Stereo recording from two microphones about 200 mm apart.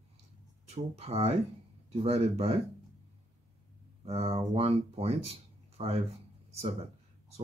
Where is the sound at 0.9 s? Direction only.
30° right (ahead or behind).